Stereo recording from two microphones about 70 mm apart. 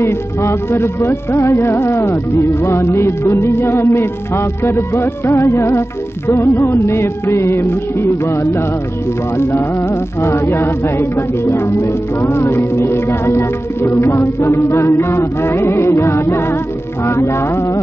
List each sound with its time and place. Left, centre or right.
0.0 s music: left
10.2 s music: left